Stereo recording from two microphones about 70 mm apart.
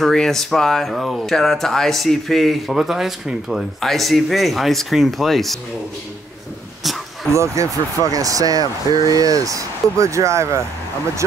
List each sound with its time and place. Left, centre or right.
0.0 s speech: centre
7.3 s speech: right